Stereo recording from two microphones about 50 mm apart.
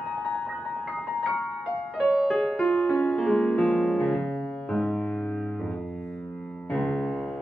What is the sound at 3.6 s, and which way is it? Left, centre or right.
Music, centre.